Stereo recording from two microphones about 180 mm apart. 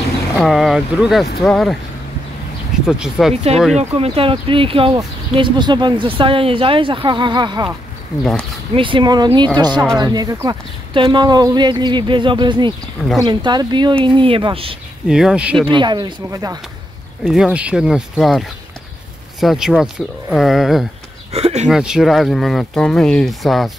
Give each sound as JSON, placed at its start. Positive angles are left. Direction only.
{"t": 0.4, "sound": "speech", "side_deg": 0}
{"t": 2.9, "sound": "speech", "side_deg": -5}
{"t": 3.7, "sound": "speech", "side_deg": -35}
{"t": 8.2, "sound": "speech", "side_deg": 5}
{"t": 8.7, "sound": "speech", "side_deg": -30}
{"t": 15.0, "sound": "speech", "side_deg": -5}
{"t": 15.6, "sound": "speech", "side_deg": -25}
{"t": 17.2, "sound": "speech", "side_deg": 0}
{"t": 21.3, "sound": "speech", "side_deg": -35}
{"t": 21.6, "sound": "speech", "side_deg": 0}